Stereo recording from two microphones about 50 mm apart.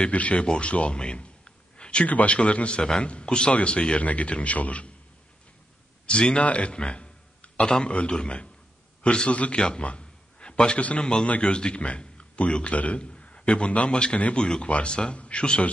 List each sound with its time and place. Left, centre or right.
0.0 s a man's voice: left
6.0 s a man's voice: left